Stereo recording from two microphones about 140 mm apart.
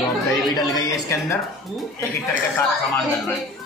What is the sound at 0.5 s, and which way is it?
Speech, 25° left (ahead or behind).